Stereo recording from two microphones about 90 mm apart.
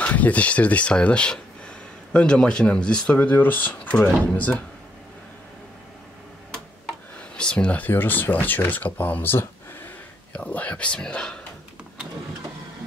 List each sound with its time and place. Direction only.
0.0 s speech: 15° left (ahead or behind)
7.2 s speech: 10° left (ahead or behind)